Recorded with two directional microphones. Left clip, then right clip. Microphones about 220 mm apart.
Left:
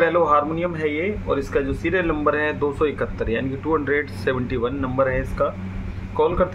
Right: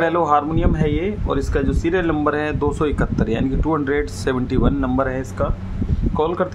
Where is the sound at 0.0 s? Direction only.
45° right (ahead or behind).